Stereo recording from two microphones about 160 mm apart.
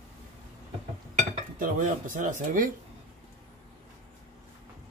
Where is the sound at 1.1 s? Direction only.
55° right (ahead or behind).